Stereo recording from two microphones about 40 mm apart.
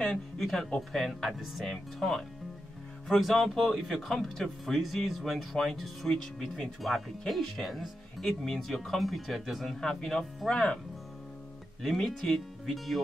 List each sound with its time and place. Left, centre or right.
0.4 s speech: centre
9.8 s speech: centre
11.9 s speech: centre